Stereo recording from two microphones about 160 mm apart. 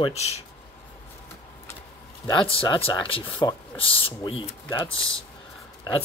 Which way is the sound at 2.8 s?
35° left (ahead or behind).